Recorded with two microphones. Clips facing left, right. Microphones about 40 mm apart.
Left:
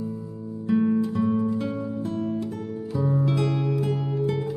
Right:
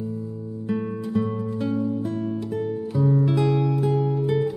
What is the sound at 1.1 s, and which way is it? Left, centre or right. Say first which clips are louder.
Music: left 2 dB; centre.